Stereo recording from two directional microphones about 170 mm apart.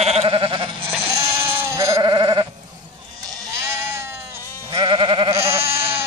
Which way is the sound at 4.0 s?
15° right (ahead or behind).